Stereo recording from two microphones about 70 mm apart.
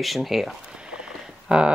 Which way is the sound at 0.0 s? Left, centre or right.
Centre.